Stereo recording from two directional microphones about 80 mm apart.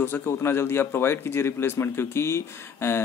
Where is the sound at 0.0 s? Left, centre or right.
Left.